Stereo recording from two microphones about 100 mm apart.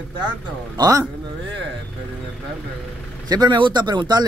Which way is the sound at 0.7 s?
40° right (ahead or behind).